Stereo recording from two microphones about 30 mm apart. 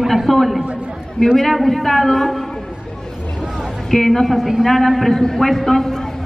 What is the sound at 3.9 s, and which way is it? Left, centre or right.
A man's voice, centre.